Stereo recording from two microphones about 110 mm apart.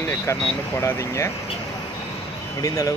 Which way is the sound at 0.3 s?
25° left (ahead or behind).